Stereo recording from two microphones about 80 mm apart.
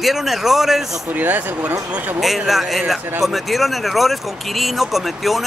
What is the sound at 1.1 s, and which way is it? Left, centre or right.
Speech, right.